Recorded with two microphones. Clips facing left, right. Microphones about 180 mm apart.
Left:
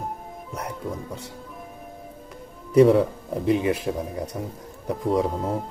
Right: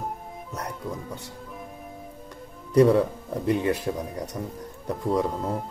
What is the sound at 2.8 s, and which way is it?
Speech, centre (ahead or behind).